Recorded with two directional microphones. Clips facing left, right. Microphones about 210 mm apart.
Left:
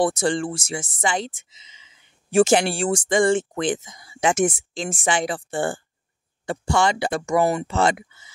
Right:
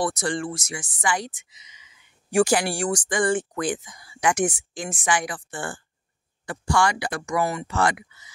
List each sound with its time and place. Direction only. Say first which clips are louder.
0.0 s a woman's voice: left 5 dB; 25° left (ahead or behind)